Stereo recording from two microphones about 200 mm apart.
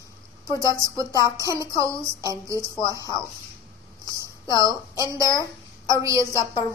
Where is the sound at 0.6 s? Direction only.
15° right (ahead or behind).